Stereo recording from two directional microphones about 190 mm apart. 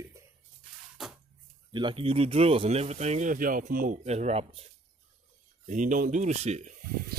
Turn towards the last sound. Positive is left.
turn(degrees=-35)  # may be behind; listen again after turning